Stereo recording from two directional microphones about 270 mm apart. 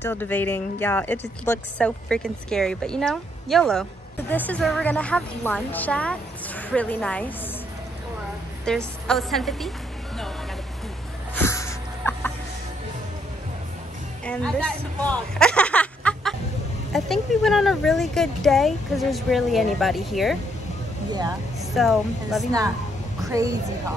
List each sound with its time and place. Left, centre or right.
0.0 s speech: centre
8.6 s speech: centre
11.4 s a sound: centre
14.2 s speech: centre
15.0 s a sound: centre
16.9 s speech: centre
21.1 s speech: centre
21.7 s speech: centre
23.2 s a woman's voice: centre